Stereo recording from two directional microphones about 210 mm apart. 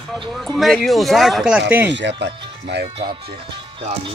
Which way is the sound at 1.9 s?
55° right (ahead or behind).